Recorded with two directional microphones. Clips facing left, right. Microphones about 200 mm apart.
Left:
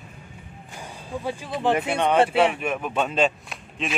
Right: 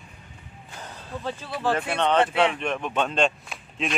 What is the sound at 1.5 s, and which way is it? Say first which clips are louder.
Speech: left 3 dB; 20° left (ahead or behind).